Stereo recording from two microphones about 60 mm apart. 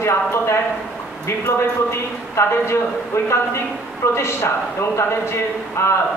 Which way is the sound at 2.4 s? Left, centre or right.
Left.